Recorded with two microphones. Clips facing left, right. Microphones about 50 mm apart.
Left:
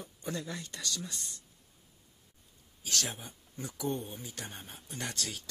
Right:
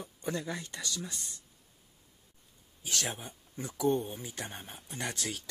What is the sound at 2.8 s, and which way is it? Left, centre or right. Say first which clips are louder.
Speech: right 1 dB; right.